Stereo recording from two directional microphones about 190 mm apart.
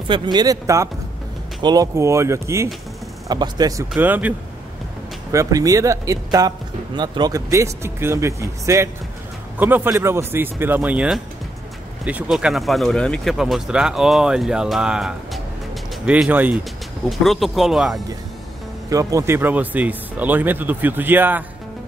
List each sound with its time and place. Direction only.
0.1 s speech: 25° right (ahead or behind)
3.9 s speech: 10° right (ahead or behind)
5.3 s speech: 15° right (ahead or behind)
18.9 s speech: 15° right (ahead or behind)